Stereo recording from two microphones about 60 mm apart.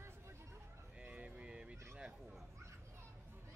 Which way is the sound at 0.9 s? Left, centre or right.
Right.